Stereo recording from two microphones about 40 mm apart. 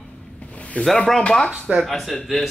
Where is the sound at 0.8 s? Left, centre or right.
Left.